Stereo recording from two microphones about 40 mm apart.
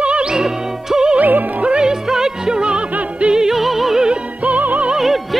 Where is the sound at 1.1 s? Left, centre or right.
Right.